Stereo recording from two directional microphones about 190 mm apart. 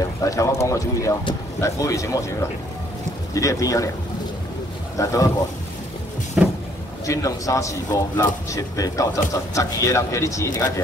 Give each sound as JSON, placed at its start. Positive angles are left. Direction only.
{"t": 0.2, "sound": "speech", "side_deg": 15}
{"t": 3.3, "sound": "speech", "side_deg": 15}
{"t": 4.9, "sound": "speech", "side_deg": 15}
{"t": 6.4, "sound": "vehicle", "side_deg": -5}
{"t": 7.1, "sound": "speech", "side_deg": 15}